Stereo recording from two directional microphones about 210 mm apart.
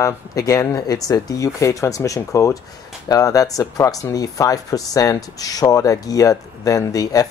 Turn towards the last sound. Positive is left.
turn(degrees=15)  # may be behind; listen again after turning